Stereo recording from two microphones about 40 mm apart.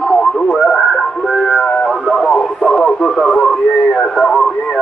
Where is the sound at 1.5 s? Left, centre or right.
Left.